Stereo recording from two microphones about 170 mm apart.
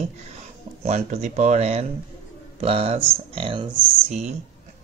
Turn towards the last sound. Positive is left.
turn(degrees=-45)  # may be behind; listen again after turning